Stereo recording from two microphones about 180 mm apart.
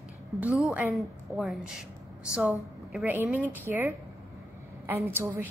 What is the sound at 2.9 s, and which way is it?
A woman's voice, 10° right (ahead or behind).